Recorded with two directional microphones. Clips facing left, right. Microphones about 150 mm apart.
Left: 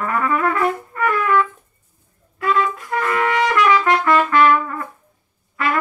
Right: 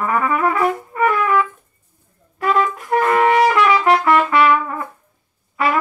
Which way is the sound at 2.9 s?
50° right (ahead or behind).